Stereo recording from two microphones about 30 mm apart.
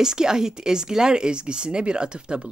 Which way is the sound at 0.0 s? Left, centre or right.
Right.